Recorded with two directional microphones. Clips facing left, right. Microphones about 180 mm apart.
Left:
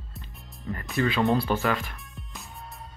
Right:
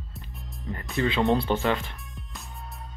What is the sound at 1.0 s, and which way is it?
Speech, 20° right (ahead or behind).